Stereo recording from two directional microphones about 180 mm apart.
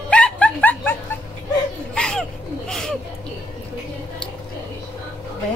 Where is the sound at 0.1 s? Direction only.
5° left (ahead or behind).